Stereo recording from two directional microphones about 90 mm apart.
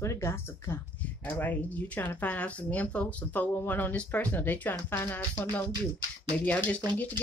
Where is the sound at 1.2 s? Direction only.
20° left (ahead or behind).